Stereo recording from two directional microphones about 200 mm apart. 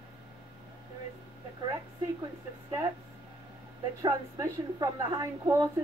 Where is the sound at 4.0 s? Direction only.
15° right (ahead or behind).